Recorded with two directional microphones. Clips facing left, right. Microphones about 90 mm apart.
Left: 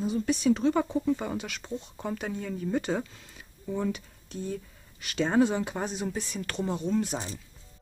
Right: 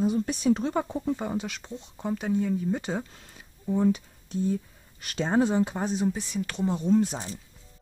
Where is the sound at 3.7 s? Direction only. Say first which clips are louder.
Right 6 dB; 25° right (ahead or behind).